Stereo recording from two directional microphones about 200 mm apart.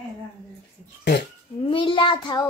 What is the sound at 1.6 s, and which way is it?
Child singing, 25° left (ahead or behind).